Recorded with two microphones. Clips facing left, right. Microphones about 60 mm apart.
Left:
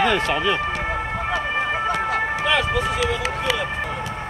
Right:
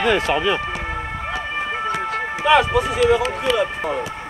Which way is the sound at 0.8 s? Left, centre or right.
Centre.